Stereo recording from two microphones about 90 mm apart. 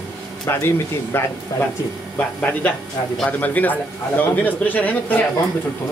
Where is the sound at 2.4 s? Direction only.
15° left (ahead or behind).